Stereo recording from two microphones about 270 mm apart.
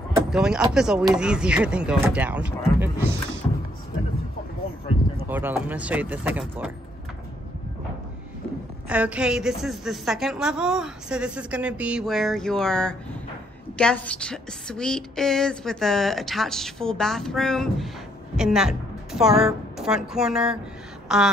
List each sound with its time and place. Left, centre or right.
0.1 s a woman's voice: centre
3.4 s a sound: centre
5.3 s a woman's voice: centre
8.8 s a woman's voice: centre